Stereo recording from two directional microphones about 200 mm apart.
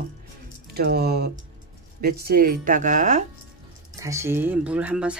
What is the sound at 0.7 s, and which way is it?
Speech, 55° right (ahead or behind).